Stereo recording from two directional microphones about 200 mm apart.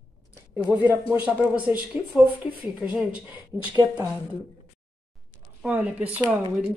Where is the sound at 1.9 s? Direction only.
5° right (ahead or behind).